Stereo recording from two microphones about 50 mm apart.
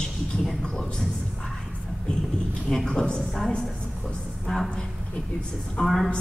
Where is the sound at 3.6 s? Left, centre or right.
Centre.